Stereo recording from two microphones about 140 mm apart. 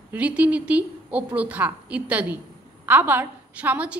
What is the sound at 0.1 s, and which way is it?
A woman's voice, 10° right (ahead or behind).